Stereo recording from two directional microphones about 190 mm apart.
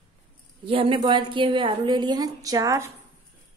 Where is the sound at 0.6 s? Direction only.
30° right (ahead or behind).